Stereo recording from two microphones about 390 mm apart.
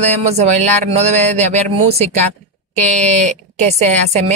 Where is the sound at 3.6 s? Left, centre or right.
Centre.